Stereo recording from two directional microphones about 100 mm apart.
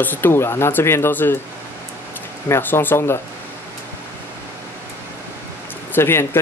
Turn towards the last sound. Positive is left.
turn(degrees=25)  # may be behind; listen again after turning